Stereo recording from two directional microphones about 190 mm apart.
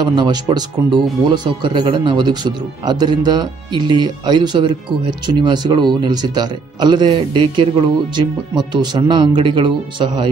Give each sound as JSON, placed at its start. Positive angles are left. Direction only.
{"t": 0.1, "sound": "speech", "side_deg": -20}